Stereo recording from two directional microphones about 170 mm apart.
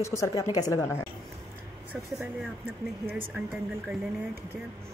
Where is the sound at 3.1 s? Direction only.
10° right (ahead or behind).